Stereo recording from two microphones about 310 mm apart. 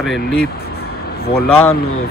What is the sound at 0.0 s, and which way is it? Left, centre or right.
Speech, centre.